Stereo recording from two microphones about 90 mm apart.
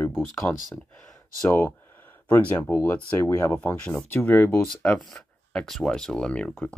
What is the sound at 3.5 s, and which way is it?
Speech, 15° left (ahead or behind).